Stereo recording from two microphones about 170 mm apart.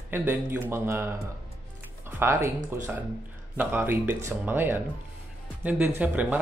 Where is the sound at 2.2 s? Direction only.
15° right (ahead or behind).